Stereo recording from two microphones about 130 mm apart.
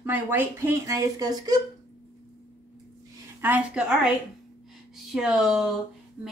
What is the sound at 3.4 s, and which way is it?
Speech, 15° right (ahead or behind).